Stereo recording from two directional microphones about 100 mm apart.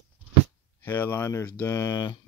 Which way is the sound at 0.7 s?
20° left (ahead or behind).